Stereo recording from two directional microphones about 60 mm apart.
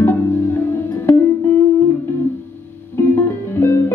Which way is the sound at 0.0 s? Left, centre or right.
Left.